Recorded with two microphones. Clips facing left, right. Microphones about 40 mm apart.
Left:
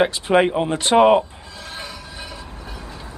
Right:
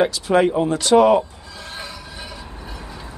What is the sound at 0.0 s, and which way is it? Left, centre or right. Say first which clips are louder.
Speech: even; left.